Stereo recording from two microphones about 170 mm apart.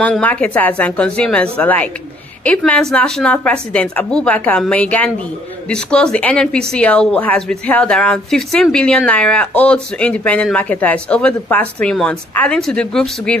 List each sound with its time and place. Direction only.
0.0 s speech: 10° left (ahead or behind)